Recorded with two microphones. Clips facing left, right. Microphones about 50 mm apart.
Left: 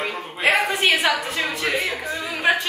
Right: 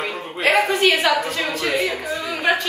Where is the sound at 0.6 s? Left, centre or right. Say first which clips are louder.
Right 3 dB; centre.